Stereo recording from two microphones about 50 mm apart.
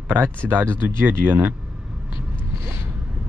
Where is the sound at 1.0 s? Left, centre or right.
Right.